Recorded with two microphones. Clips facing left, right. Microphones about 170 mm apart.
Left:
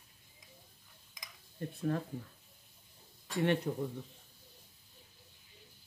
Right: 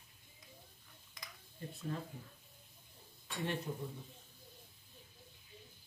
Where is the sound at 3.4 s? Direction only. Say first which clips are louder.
Left 8 dB; 70° left (ahead or behind).